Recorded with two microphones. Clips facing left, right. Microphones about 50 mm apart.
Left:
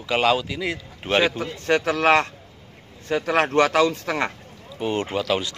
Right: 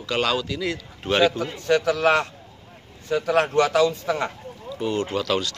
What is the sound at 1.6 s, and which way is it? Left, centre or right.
A man's voice, left.